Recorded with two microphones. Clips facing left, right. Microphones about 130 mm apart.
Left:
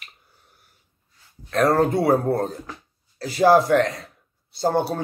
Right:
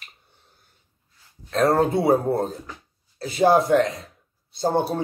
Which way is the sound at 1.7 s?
25° right (ahead or behind).